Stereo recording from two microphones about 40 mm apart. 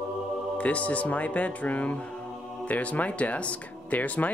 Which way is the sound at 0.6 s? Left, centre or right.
Left.